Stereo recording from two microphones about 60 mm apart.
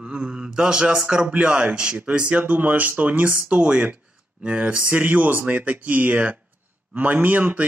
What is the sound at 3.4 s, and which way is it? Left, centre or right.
A man's voice, centre.